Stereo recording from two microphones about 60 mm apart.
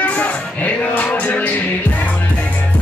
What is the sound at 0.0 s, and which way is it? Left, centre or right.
Music, left.